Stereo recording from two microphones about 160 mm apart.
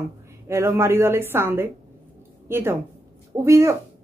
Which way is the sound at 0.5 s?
15° right (ahead or behind).